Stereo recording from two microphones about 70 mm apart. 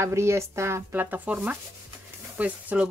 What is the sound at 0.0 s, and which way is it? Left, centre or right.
Speech, right.